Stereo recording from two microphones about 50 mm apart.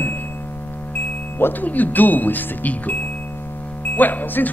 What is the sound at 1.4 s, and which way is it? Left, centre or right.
Speech, left.